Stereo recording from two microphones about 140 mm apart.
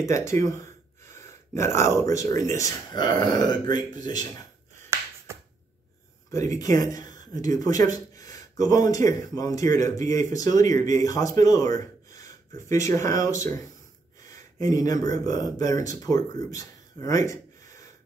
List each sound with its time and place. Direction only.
0.0 s speech: 20° left (ahead or behind)
4.8 s finger snapping: 20° right (ahead or behind)
6.3 s speech: 20° left (ahead or behind)